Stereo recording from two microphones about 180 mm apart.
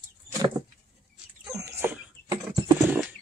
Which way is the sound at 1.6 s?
15° right (ahead or behind).